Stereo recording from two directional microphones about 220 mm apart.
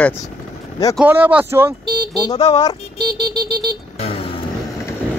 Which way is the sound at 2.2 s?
20° left (ahead or behind).